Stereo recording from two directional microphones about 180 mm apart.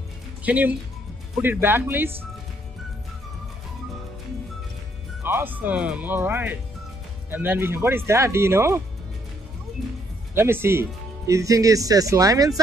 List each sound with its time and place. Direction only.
0.4 s speech: 10° right (ahead or behind)
5.2 s speech: 10° right (ahead or behind)
10.3 s speech: 15° right (ahead or behind)